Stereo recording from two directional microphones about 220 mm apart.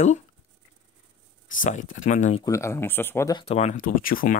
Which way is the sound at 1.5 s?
35° left (ahead or behind).